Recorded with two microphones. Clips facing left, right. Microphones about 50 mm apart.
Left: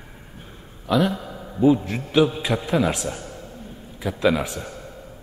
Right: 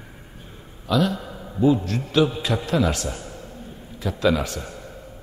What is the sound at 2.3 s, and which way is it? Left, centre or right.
A man's voice, centre.